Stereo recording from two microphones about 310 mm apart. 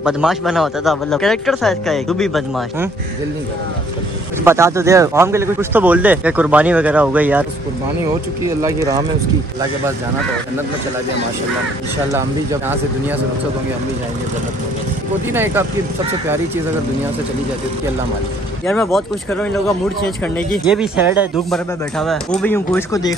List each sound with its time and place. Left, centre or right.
0.0 s speech: centre
4.5 s speech: centre
12.1 s speech: centre
15.3 s speech: centre
18.7 s speech: centre